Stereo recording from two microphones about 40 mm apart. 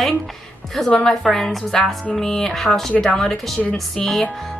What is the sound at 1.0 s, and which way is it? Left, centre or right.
A woman's voice, centre.